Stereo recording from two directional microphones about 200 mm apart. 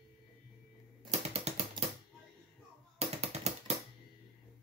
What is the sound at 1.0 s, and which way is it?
Typing, 30° right (ahead or behind).